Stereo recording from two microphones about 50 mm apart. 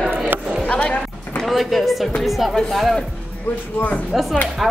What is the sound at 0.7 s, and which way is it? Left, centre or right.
Music, left.